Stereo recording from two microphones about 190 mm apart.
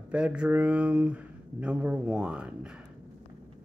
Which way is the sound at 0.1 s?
5° right (ahead or behind).